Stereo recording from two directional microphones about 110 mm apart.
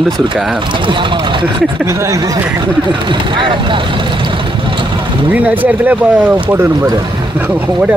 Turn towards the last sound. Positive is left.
turn(degrees=-15)  # may be behind; listen again after turning